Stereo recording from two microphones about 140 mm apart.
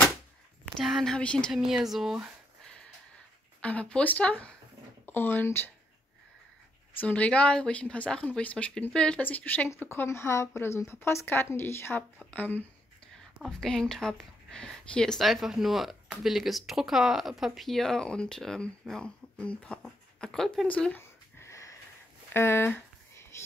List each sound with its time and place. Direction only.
0.7 s speech: centre (ahead or behind)
3.6 s speech: 10° left (ahead or behind)
7.0 s speech: 10° left (ahead or behind)
22.3 s a sound: 15° left (ahead or behind)